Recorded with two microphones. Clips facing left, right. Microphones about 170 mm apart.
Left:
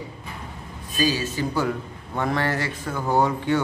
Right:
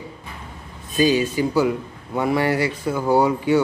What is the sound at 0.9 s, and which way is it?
Speech, 20° right (ahead or behind).